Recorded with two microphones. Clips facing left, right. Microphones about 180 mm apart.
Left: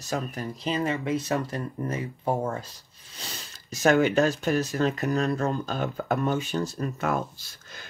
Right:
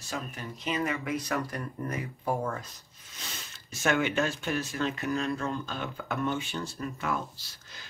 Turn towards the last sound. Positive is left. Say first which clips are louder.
# left 5 dB
turn(degrees=45)  # may be behind; listen again after turning